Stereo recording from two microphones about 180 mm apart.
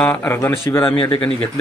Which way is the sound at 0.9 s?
30° left (ahead or behind).